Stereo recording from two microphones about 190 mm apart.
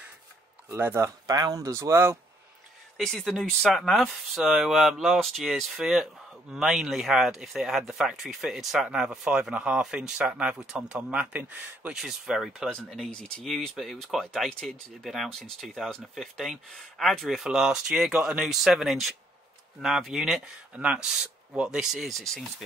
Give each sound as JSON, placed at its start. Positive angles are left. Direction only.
{"t": 0.7, "sound": "speech", "side_deg": -10}
{"t": 3.0, "sound": "speech", "side_deg": 0}